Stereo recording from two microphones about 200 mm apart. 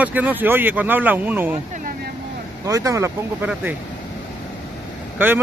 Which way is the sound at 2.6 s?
15° right (ahead or behind).